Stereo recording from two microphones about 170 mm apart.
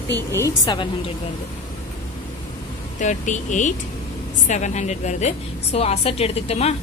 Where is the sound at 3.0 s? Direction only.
45° left (ahead or behind).